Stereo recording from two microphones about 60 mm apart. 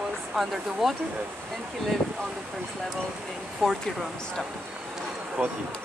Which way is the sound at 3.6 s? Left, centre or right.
Centre.